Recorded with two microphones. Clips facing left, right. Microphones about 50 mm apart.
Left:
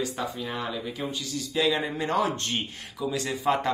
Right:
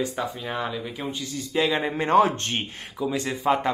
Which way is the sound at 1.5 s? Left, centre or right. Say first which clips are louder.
Right 2 dB; right.